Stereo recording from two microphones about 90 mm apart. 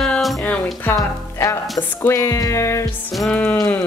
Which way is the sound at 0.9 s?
40° left (ahead or behind).